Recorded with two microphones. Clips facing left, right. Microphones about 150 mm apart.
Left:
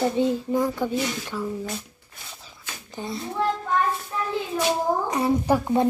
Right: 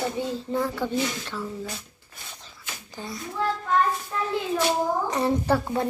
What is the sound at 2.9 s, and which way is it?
Child singing, 25° left (ahead or behind).